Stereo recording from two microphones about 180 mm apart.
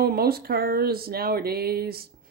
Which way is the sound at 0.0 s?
60° right (ahead or behind).